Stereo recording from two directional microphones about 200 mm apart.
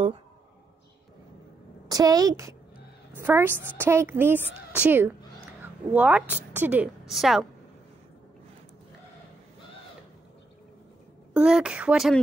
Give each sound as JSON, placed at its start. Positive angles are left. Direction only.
{"t": 1.9, "sound": "a woman's voice", "side_deg": -20}
{"t": 11.3, "sound": "speech", "side_deg": -5}